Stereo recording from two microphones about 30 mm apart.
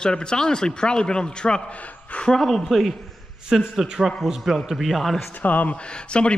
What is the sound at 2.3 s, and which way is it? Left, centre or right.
Speech, centre.